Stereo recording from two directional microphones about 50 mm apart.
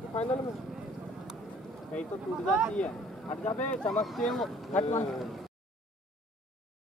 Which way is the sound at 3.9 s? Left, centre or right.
Centre.